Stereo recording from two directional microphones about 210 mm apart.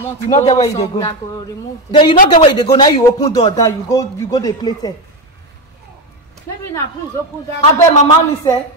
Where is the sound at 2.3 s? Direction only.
20° left (ahead or behind).